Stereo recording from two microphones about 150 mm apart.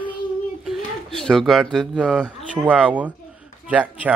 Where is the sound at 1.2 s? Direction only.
5° left (ahead or behind).